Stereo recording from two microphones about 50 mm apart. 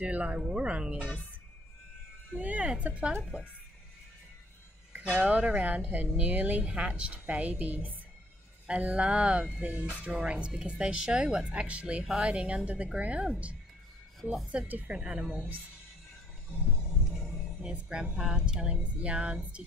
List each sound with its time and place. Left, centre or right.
0.0 s speech: right
2.3 s speech: right
5.1 s speech: right
6.6 s speech: right
14.7 s speech: right
15.0 s speech: centre
17.6 s speech: centre